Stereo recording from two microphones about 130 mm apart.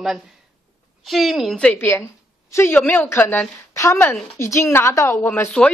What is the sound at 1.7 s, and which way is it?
A woman's voice, 20° left (ahead or behind).